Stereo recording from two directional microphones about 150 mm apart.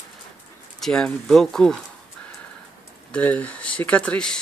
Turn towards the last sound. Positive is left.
turn(degrees=5)  # may be behind; listen again after turning